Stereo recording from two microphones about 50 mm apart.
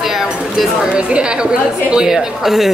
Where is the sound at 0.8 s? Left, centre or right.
Centre.